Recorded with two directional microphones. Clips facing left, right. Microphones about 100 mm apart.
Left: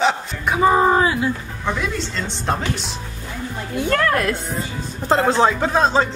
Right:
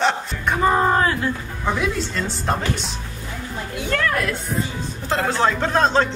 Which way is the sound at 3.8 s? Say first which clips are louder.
Left 4 dB; 45° left (ahead or behind).